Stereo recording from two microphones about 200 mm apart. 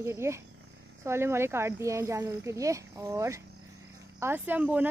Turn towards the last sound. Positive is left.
turn(degrees=-10)  # may be behind; listen again after turning